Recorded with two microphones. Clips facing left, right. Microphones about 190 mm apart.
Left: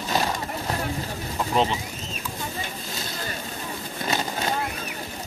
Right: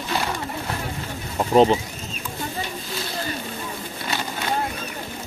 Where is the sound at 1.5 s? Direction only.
40° right (ahead or behind).